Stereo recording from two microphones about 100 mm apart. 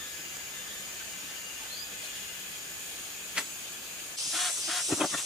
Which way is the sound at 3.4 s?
10° right (ahead or behind).